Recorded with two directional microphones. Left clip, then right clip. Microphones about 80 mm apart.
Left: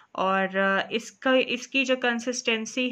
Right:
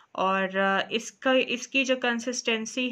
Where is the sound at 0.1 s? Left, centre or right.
Left.